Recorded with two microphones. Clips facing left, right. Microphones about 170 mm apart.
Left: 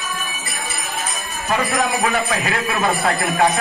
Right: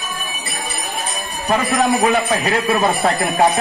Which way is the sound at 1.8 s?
35° right (ahead or behind).